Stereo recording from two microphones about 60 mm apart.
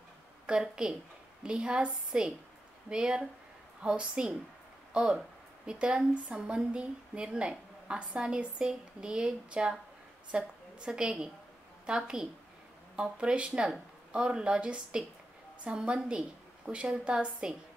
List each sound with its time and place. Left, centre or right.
0.5 s a woman's voice: centre